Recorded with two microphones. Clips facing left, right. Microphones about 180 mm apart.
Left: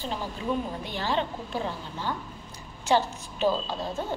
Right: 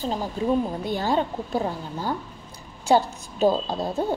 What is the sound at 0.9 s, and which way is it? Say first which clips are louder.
A woman's voice: right 4 dB; 40° right (ahead or behind).